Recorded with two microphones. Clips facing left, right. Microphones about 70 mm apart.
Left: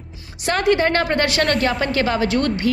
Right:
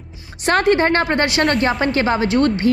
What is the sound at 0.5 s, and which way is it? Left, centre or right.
A woman's voice, right.